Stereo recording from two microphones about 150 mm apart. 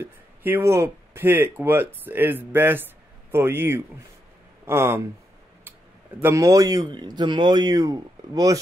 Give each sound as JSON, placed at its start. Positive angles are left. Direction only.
{"t": 0.0, "sound": "speech", "side_deg": -15}
{"t": 6.2, "sound": "speech", "side_deg": -20}